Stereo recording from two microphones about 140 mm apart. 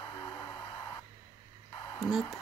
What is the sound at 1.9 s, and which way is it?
Speech, 5° right (ahead or behind).